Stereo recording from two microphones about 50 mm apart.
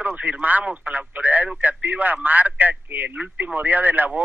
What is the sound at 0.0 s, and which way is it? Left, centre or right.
A man's voice, right.